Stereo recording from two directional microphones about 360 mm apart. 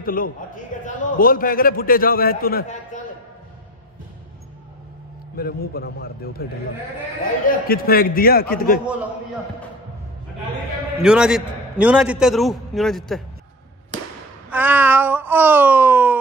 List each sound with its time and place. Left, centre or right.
0.0 s a man's voice: left
5.3 s a man's voice: left
7.4 s a man's voice: left
11.0 s a man's voice: centre
14.5 s a man's voice: centre